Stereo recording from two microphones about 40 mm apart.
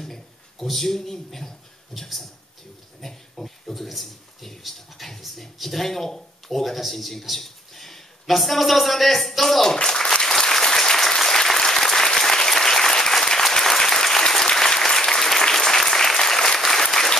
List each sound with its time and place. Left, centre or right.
0.0 s speech: centre
9.8 s applause: centre